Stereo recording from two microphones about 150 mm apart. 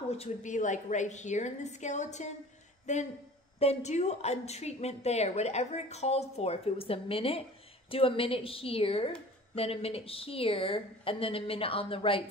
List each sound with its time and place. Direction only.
0.1 s a woman's voice: 50° left (ahead or behind)